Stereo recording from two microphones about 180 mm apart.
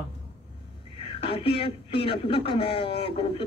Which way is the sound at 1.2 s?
30° left (ahead or behind).